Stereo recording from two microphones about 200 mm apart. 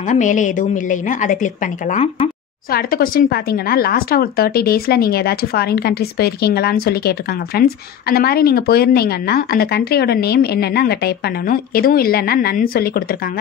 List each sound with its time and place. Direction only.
0.1 s a woman's voice: 40° left (ahead or behind)
2.7 s speech: 45° left (ahead or behind)